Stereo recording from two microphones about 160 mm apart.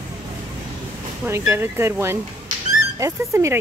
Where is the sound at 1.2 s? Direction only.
15° right (ahead or behind).